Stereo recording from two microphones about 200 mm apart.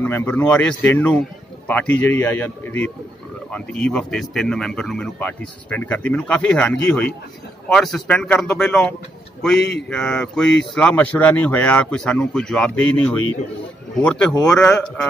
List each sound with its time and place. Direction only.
0.0 s speech: 10° left (ahead or behind)
9.6 s speech: 55° left (ahead or behind)
9.8 s speech: 5° left (ahead or behind)